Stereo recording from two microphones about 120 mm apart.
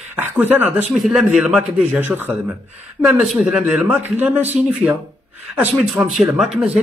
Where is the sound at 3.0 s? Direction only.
5° right (ahead or behind).